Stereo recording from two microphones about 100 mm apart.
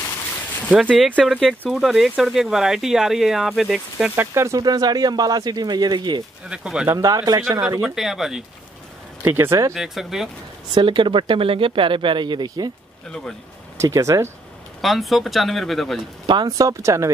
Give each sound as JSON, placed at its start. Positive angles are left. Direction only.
{"t": 0.7, "sound": "speech", "side_deg": -5}
{"t": 4.1, "sound": "speech", "side_deg": -25}
{"t": 4.6, "sound": "speech", "side_deg": -40}
{"t": 6.5, "sound": "speech", "side_deg": -10}
{"t": 6.9, "sound": "speech", "side_deg": -35}
{"t": 7.8, "sound": "speech", "side_deg": -5}
{"t": 9.2, "sound": "speech", "side_deg": -25}
{"t": 9.8, "sound": "speech", "side_deg": -5}
{"t": 10.7, "sound": "speech", "side_deg": -50}
{"t": 13.7, "sound": "speech", "side_deg": -35}
{"t": 14.8, "sound": "speech", "side_deg": 0}
{"t": 16.3, "sound": "speech", "side_deg": -45}